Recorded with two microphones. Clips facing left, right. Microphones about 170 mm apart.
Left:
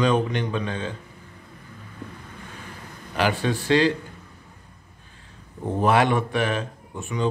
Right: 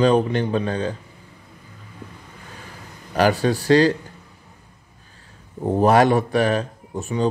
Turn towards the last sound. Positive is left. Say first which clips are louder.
# right 4 dB
turn(degrees=-40)  # may be behind; listen again after turning